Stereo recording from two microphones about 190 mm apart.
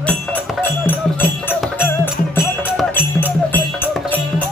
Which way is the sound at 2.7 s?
10° left (ahead or behind).